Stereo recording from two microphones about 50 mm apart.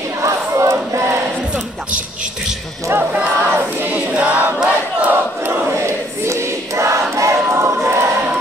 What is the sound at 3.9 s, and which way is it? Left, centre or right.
Choir, right.